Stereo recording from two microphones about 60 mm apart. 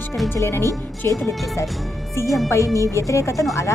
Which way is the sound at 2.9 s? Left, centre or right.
Left.